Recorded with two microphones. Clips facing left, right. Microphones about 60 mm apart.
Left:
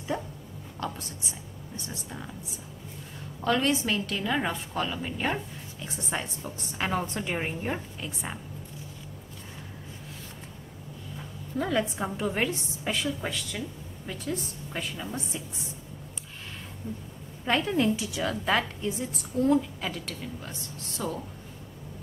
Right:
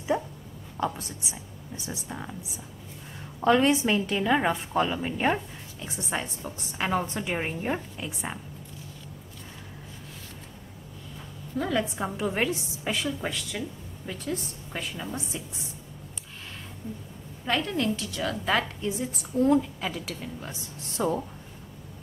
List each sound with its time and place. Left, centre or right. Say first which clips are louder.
0.1 s a woman's voice: right 3 dB; centre
3.3 s a woman's voice: right 4 dB; centre
5.8 s a woman's voice: right 2 dB; centre
11.5 s a woman's voice: even; centre
17.5 s a woman's voice: left 2 dB; centre
21.0 s speech: right 6 dB; centre